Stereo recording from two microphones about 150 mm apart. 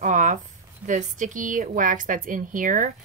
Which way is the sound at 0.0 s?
55° right (ahead or behind).